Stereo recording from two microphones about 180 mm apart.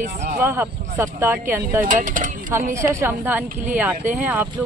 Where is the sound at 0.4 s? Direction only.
15° right (ahead or behind).